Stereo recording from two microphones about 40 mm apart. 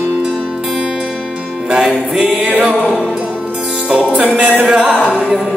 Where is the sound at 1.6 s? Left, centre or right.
Right.